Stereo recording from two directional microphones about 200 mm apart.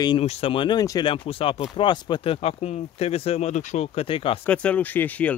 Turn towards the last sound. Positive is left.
turn(degrees=10)  # may be behind; listen again after turning